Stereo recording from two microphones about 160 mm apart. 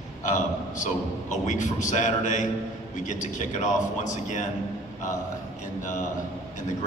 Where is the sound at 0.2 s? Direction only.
55° left (ahead or behind).